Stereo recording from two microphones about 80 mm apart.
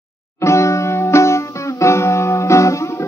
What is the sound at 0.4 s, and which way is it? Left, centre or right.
Music, left.